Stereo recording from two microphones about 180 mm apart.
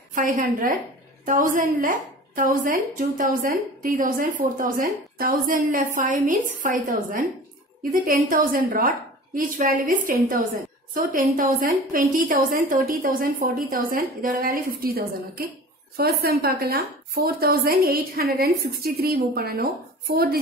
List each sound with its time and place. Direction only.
0.1 s a woman's voice: 45° right (ahead or behind)